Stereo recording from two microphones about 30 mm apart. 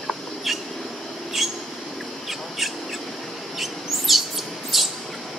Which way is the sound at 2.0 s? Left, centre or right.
Centre.